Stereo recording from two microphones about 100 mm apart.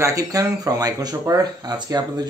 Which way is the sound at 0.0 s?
35° right (ahead or behind).